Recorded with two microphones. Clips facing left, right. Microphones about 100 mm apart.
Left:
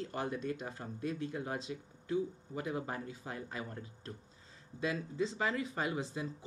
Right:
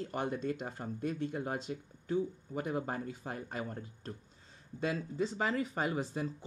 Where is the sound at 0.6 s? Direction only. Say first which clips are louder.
Right 2 dB; 55° right (ahead or behind).